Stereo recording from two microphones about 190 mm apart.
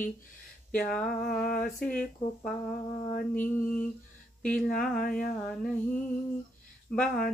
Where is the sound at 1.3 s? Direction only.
50° left (ahead or behind).